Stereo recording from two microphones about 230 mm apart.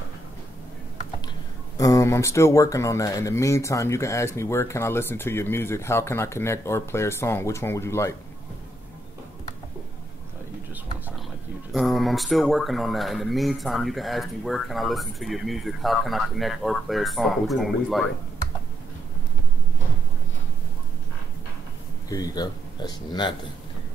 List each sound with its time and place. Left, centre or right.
1.8 s speech: centre
11.7 s speech: centre
22.1 s speech: centre